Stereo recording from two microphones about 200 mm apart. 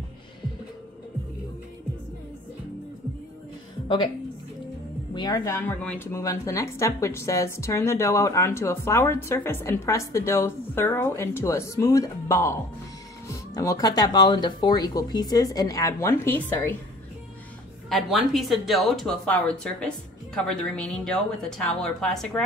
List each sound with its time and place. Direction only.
5.1 s speech: 20° left (ahead or behind)
13.6 s speech: 15° left (ahead or behind)
17.8 s speech: centre (ahead or behind)